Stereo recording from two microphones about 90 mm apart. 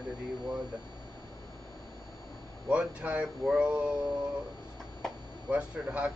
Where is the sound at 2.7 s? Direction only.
15° right (ahead or behind).